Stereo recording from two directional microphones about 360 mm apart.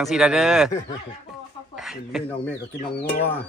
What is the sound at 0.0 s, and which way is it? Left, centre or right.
Speech, centre.